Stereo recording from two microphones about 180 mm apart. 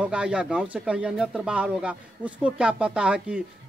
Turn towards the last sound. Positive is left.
turn(degrees=-5)  # may be behind; listen again after turning